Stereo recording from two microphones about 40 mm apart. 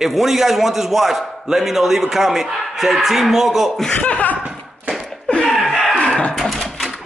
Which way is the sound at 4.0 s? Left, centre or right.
Left.